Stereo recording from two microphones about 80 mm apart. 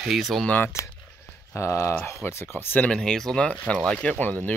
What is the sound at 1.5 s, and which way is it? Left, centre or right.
Speech, left.